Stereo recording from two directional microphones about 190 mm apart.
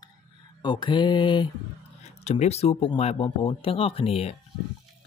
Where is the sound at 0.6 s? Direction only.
25° left (ahead or behind).